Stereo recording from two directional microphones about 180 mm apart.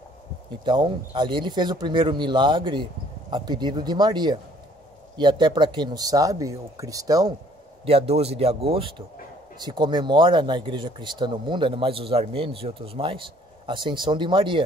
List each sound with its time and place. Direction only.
0.7 s speech: 25° right (ahead or behind)
7.8 s a man's voice: 35° right (ahead or behind)